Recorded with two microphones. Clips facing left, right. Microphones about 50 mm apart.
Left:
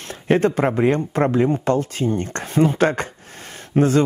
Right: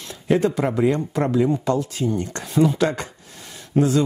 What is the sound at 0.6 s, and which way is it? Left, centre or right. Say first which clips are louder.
A man's voice: left 2 dB; left.